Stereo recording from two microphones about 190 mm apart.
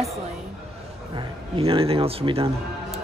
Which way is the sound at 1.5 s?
30° right (ahead or behind).